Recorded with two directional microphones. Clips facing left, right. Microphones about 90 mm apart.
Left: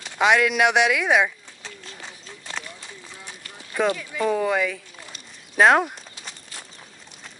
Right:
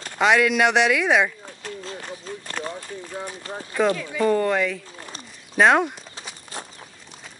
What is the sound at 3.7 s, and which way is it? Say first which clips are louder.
Speech: right 2 dB; centre (ahead or behind).